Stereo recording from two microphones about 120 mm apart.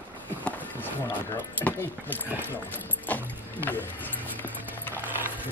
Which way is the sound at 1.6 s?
15° left (ahead or behind).